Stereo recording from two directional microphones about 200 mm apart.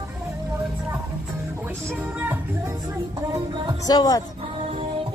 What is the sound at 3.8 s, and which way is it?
Speech, 20° left (ahead or behind).